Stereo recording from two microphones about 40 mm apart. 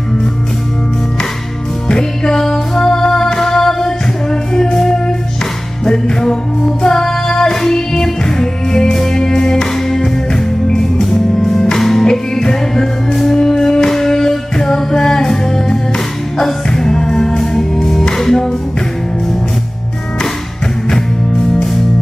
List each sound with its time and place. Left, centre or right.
1.9 s music: centre